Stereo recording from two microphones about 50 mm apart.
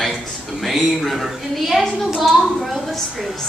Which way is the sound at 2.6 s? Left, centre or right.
Centre.